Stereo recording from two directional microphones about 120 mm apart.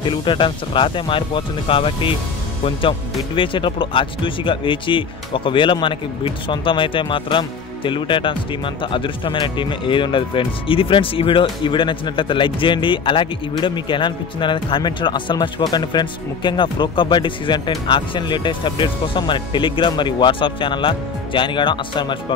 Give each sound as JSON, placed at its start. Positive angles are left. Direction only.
{"t": 0.0, "sound": "speech", "side_deg": 40}